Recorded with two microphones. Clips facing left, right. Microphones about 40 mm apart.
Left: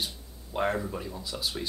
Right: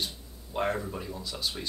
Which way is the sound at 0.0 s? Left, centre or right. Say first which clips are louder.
Even; centre.